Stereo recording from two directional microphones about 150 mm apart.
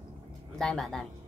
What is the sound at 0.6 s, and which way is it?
Speech, 5° left (ahead or behind).